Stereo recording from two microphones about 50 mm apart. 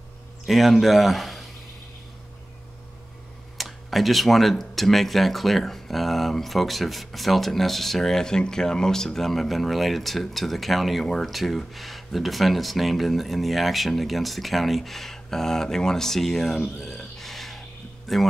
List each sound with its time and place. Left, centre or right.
0.5 s speech: centre
3.5 s speech: centre
16.6 s a sound: centre
18.0 s a man's voice: centre